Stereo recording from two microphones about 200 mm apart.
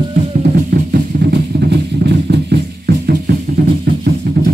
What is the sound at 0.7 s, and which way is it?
Music, 60° right (ahead or behind).